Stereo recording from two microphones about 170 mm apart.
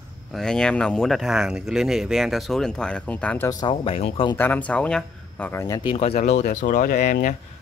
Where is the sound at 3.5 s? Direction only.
25° left (ahead or behind).